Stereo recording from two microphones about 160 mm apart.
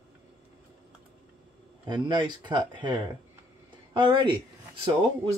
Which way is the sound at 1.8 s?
30° right (ahead or behind).